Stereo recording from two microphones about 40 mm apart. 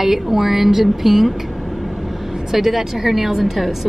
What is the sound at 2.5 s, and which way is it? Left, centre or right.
A woman's voice, centre.